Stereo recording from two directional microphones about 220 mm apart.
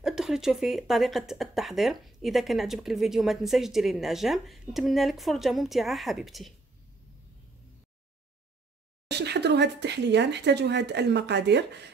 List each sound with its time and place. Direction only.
0.0 s speech: centre (ahead or behind)
9.1 s speech: 50° right (ahead or behind)